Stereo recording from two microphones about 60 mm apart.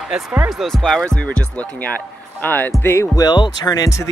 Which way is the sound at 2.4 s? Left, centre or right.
Left.